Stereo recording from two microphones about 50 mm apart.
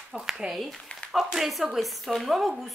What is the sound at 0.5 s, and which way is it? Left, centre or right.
Speech, centre.